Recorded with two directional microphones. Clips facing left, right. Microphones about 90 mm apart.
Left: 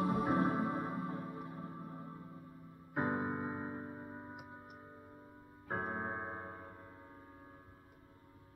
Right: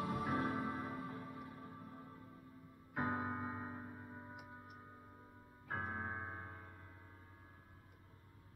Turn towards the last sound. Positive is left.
turn(degrees=30)  # may be behind; listen again after turning